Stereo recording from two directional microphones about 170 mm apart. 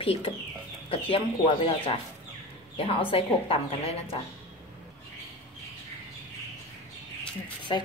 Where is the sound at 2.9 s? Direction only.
35° left (ahead or behind).